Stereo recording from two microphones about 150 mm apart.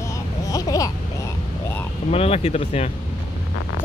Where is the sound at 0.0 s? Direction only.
20° left (ahead or behind).